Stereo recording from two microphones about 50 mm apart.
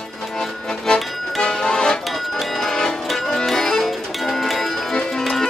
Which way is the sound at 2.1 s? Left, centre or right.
Centre.